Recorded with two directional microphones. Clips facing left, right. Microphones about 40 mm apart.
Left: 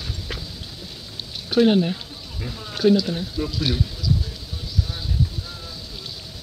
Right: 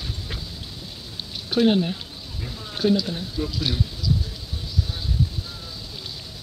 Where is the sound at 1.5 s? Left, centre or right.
Centre.